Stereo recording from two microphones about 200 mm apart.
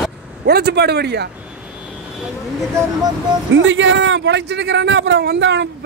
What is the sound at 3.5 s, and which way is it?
Speech, 70° right (ahead or behind).